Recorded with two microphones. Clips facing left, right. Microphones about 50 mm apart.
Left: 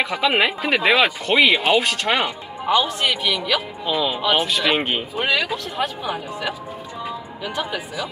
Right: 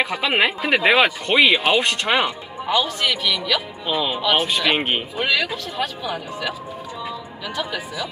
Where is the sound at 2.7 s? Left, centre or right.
Left.